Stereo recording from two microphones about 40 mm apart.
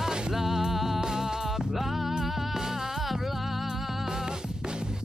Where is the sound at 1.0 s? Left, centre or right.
Centre.